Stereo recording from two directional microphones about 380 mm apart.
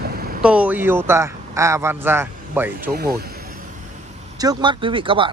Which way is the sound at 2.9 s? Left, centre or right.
Right.